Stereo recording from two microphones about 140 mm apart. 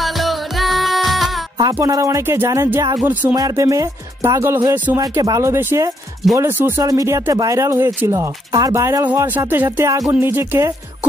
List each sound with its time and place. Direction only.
0.0 s music: centre (ahead or behind)
1.6 s speech: 25° right (ahead or behind)
3.3 s speech: 25° right (ahead or behind)